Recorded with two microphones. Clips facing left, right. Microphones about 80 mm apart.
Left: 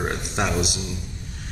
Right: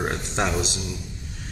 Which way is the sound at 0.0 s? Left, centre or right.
Centre.